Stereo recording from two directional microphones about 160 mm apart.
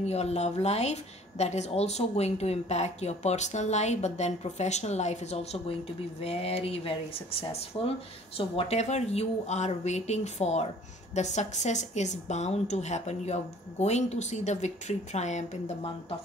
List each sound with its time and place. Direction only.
0.0 s a woman's voice: 40° left (ahead or behind)